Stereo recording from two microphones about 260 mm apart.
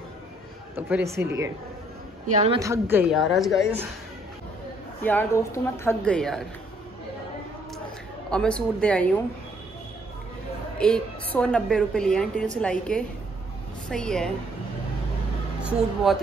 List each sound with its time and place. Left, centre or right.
0.7 s speech: centre
2.3 s a woman's voice: right
2.6 s a woman's voice: centre
5.0 s a woman's voice: centre
8.3 s a woman's voice: centre
10.8 s a woman's voice: centre
15.6 s speech: centre